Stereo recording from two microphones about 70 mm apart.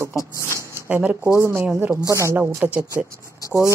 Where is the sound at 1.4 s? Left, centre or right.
Right.